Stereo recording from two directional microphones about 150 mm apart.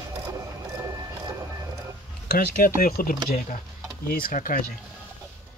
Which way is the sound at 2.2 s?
75° left (ahead or behind).